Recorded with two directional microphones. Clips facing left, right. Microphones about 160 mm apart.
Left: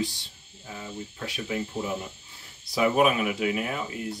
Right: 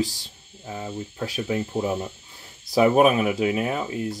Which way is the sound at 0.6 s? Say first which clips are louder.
Right 6 dB; 35° right (ahead or behind).